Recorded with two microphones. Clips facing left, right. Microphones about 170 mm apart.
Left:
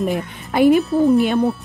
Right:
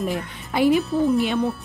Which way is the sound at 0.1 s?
55° left (ahead or behind).